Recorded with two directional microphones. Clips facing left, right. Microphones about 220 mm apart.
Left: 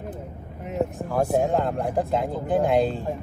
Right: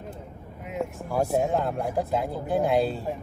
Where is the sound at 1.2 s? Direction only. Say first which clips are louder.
Left 2 dB; centre (ahead or behind).